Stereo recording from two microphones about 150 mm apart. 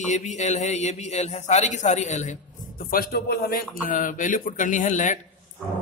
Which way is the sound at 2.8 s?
75° left (ahead or behind).